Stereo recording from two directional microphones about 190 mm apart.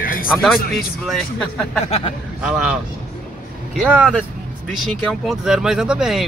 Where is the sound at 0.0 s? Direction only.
45° left (ahead or behind).